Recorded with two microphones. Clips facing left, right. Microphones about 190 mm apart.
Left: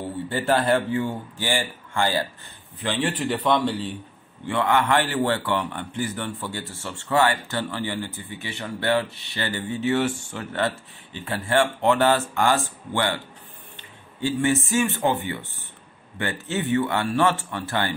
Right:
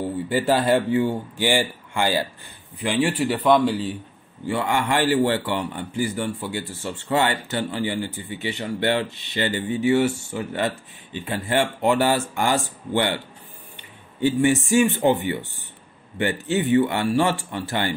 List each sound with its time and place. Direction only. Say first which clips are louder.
0.3 s a man's voice: right 2 dB; 15° right (ahead or behind)